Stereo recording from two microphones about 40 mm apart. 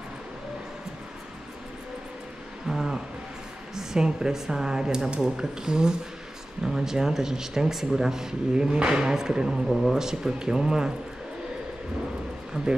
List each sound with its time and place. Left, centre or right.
2.7 s a sound: centre
3.7 s speech: centre
12.6 s speech: centre